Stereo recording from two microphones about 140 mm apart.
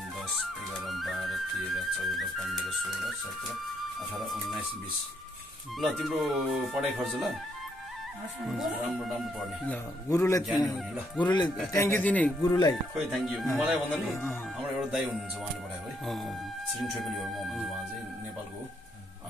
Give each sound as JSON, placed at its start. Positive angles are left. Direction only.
{"t": 0.3, "sound": "music", "side_deg": 0}
{"t": 4.2, "sound": "a sound", "side_deg": 0}
{"t": 5.8, "sound": "speech", "side_deg": 0}
{"t": 8.5, "sound": "speech", "side_deg": 0}
{"t": 10.0, "sound": "a man's voice", "side_deg": 25}
{"t": 11.7, "sound": "a man's voice", "side_deg": 15}
{"t": 12.4, "sound": "a man's voice", "side_deg": 25}
{"t": 13.1, "sound": "speech", "side_deg": 0}
{"t": 16.8, "sound": "speech", "side_deg": 0}